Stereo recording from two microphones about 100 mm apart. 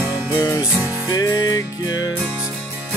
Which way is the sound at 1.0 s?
40° left (ahead or behind).